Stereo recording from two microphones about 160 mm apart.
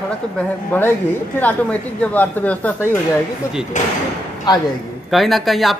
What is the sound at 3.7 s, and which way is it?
Speech, 50° left (ahead or behind).